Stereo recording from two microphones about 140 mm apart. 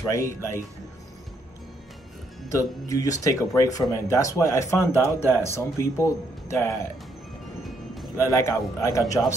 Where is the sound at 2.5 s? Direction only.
25° left (ahead or behind).